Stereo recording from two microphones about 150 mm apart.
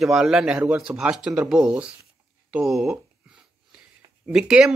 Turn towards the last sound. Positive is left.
turn(degrees=-5)  # may be behind; listen again after turning